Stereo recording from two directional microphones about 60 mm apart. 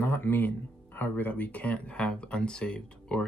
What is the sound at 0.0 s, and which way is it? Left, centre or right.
Speech, left.